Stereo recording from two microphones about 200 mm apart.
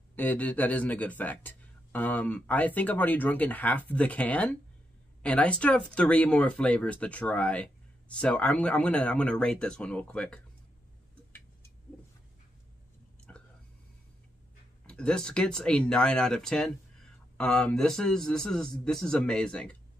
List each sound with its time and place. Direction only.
0.1 s speech: 10° left (ahead or behind)
13.3 s whispering: 5° left (ahead or behind)
14.9 s speech: 5° left (ahead or behind)